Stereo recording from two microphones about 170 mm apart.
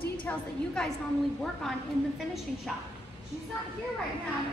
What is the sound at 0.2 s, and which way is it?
Speech, 5° left (ahead or behind).